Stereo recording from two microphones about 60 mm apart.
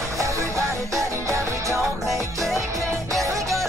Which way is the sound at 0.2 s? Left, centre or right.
Right.